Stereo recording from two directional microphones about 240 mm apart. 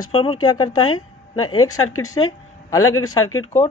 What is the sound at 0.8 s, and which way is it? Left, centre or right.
Speech, left.